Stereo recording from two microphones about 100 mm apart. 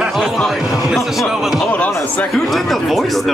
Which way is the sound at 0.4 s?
Centre (ahead or behind).